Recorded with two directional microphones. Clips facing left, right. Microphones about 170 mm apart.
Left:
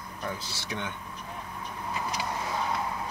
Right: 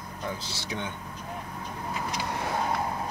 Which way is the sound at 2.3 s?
60° right (ahead or behind).